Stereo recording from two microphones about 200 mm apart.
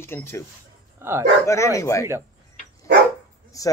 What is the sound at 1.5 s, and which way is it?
Speech, 15° left (ahead or behind).